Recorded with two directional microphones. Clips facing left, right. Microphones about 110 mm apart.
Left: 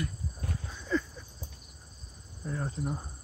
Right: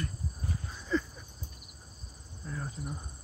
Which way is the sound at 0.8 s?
5° right (ahead or behind).